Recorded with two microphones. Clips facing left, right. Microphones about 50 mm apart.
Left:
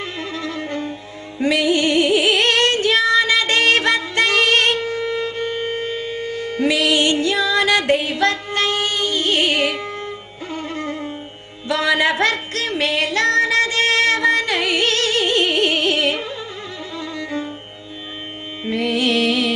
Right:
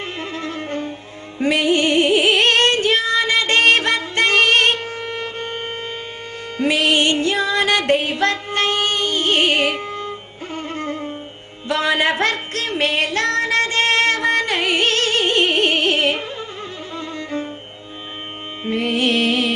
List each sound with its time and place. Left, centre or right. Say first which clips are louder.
0.0 s music: even; right
9.8 s music: right 1 dB; left
10.5 s music: even; right
18.7 s music: even; right